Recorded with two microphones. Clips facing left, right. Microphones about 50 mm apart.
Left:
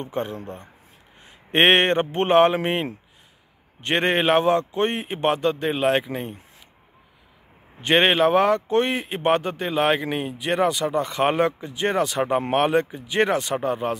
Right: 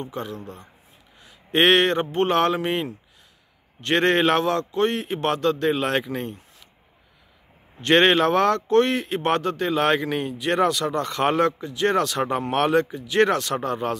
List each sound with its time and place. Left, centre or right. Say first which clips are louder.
0.0 s speech: left 3 dB; left
3.8 s speech: right 1 dB; centre
7.8 s speech: right 1 dB; centre